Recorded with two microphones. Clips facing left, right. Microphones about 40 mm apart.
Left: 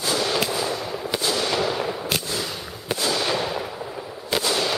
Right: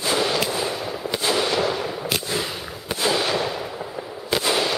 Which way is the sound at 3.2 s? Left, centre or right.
Centre.